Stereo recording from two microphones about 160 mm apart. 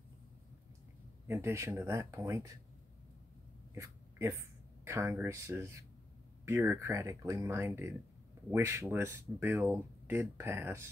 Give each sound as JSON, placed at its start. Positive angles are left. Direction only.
{"t": 1.2, "sound": "speech", "side_deg": -15}
{"t": 3.7, "sound": "speech", "side_deg": -20}